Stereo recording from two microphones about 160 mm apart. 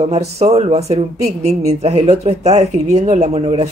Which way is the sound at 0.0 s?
40° right (ahead or behind).